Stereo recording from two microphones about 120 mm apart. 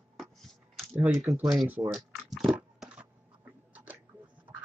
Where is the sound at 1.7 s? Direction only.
20° right (ahead or behind).